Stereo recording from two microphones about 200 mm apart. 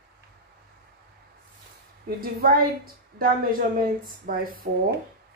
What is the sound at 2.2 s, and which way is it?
A woman's voice, 45° right (ahead or behind).